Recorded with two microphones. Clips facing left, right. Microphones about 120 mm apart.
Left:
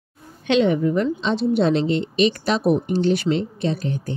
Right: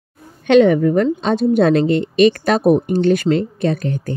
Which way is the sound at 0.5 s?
50° right (ahead or behind).